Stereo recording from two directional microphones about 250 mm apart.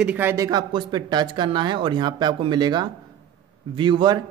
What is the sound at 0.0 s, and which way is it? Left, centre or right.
Speech, centre.